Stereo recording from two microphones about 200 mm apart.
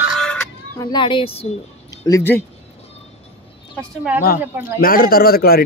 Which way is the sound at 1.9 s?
15° left (ahead or behind).